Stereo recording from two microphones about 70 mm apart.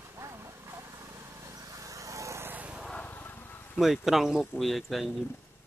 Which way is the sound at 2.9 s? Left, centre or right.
Left.